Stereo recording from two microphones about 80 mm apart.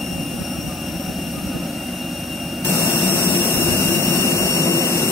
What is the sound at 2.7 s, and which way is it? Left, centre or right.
Jet engine, left.